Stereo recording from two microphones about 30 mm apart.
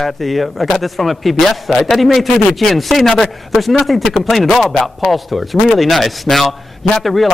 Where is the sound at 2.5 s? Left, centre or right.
Centre.